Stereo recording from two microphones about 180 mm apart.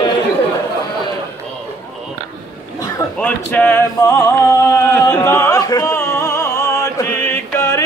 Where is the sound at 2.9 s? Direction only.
10° left (ahead or behind).